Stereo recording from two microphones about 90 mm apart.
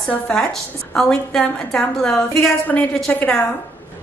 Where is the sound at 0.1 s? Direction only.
10° left (ahead or behind).